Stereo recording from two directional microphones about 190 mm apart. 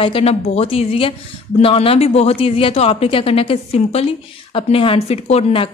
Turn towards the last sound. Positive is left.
turn(degrees=35)  # may be behind; listen again after turning